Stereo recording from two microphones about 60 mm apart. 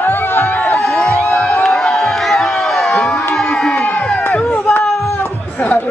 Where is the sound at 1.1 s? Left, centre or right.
Left.